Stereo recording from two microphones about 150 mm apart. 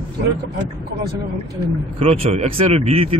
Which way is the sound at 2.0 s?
40° right (ahead or behind).